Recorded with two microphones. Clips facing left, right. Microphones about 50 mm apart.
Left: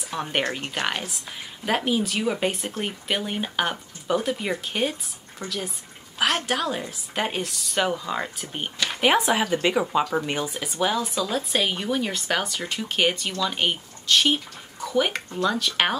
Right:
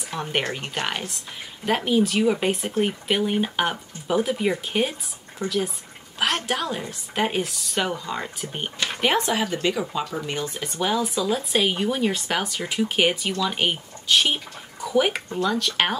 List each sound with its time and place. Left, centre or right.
0.0 s speech: centre
10.5 s speech: centre
15.4 s speech: centre